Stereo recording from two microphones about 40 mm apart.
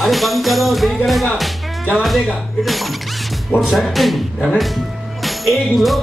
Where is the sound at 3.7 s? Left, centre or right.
Centre.